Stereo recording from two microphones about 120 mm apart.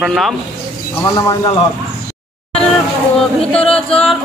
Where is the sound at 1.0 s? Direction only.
25° left (ahead or behind).